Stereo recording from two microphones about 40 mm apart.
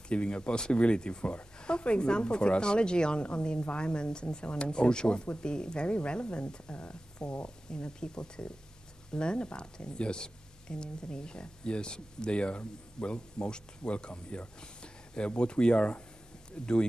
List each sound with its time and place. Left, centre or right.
0.1 s speech: left